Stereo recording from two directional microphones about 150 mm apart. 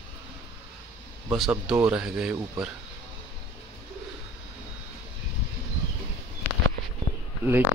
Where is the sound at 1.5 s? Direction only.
10° right (ahead or behind).